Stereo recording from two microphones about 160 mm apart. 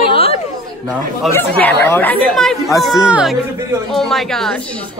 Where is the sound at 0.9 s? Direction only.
10° left (ahead or behind).